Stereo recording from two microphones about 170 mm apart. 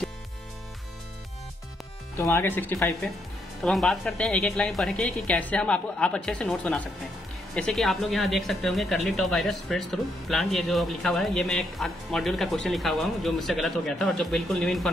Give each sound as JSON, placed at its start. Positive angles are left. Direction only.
{"t": 2.1, "sound": "speech", "side_deg": 15}
{"t": 3.6, "sound": "speech", "side_deg": 0}